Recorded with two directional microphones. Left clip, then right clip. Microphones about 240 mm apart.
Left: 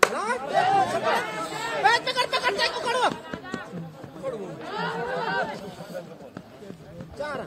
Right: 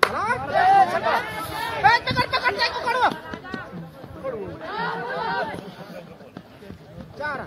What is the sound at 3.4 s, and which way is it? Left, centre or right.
Run, right.